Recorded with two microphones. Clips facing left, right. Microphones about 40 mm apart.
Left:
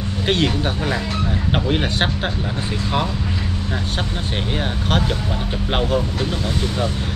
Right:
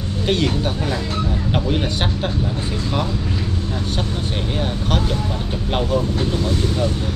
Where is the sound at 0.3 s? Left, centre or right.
Left.